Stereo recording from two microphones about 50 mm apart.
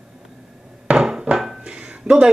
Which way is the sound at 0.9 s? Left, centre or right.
Centre.